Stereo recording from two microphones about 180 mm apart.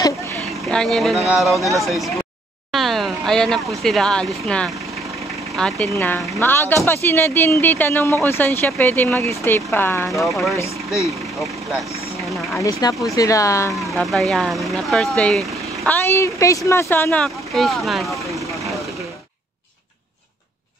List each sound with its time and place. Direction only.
0.7 s speech: 5° left (ahead or behind)
10.0 s speech: centre (ahead or behind)
10.6 s speech: 15° left (ahead or behind)
12.5 s speech: 20° left (ahead or behind)
13.9 s speech: centre (ahead or behind)